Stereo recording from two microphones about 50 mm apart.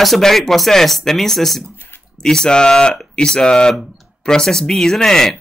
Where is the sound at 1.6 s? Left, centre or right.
Right.